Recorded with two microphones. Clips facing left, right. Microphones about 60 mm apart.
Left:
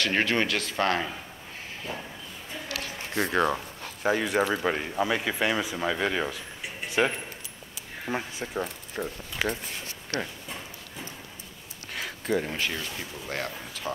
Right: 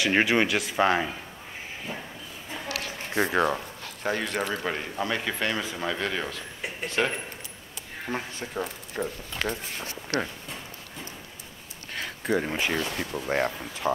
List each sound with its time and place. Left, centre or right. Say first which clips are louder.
0.0 s speech: right 3 dB; centre
3.2 s speech: right 1 dB; centre
3.8 s speech: left 5 dB; centre
8.1 s speech: left 1 dB; centre
12.3 s speech: right 2 dB; centre
12.7 s speech: right 6 dB; right
13.3 s speech: right 7 dB; right